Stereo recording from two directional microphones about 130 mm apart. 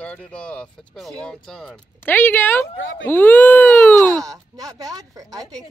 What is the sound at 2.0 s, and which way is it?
Speech, 15° left (ahead or behind).